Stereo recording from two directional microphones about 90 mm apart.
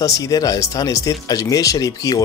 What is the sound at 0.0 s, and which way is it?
Speech, 40° left (ahead or behind).